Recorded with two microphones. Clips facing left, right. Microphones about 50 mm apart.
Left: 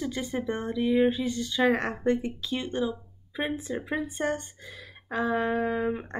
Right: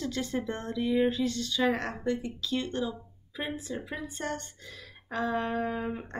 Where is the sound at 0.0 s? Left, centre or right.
Centre; by 2.5 s left.